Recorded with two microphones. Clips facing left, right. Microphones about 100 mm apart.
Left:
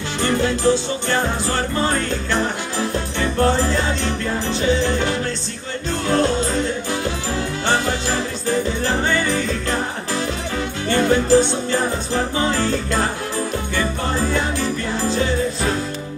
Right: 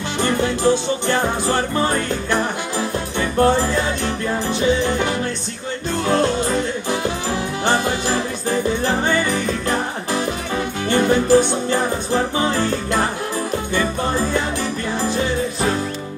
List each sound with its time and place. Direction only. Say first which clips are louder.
0.2 s music: even; 20° right (ahead or behind)
14.3 s music: even; 15° right (ahead or behind)